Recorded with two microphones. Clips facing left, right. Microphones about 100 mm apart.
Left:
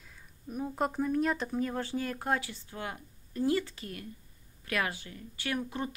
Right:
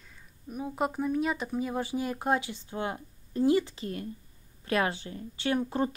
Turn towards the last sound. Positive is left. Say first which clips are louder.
# right 6 dB
turn(degrees=-35)  # may be behind; listen again after turning